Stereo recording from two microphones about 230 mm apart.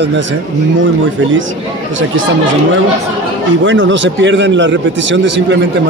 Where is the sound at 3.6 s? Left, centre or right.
Right.